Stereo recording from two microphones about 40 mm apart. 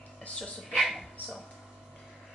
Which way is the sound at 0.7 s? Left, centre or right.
Centre.